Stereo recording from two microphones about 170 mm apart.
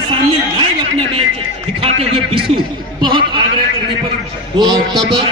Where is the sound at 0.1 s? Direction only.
30° right (ahead or behind).